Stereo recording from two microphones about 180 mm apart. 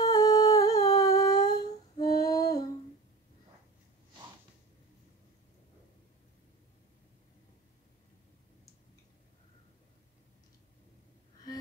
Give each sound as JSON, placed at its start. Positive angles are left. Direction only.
{"t": 0.0, "sound": "humming", "side_deg": 20}